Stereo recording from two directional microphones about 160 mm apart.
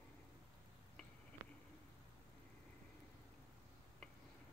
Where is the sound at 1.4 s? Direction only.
15° right (ahead or behind).